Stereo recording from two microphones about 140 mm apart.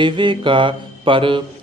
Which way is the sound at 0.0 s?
35° right (ahead or behind).